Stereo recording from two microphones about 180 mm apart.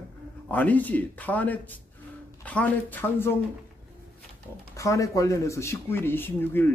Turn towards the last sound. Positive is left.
turn(degrees=10)  # may be behind; listen again after turning